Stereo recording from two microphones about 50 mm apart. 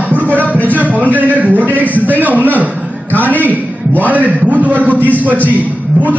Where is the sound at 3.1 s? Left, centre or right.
Left.